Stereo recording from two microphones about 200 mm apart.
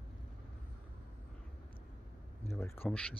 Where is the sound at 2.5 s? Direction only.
10° left (ahead or behind).